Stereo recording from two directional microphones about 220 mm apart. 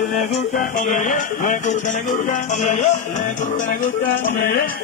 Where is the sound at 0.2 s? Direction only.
35° left (ahead or behind).